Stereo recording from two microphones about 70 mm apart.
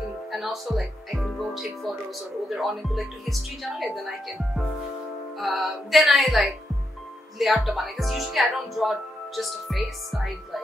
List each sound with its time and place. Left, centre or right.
0.3 s speech: centre
5.4 s speech: centre